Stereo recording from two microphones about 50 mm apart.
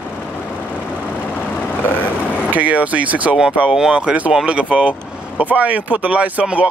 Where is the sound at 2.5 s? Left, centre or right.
Right.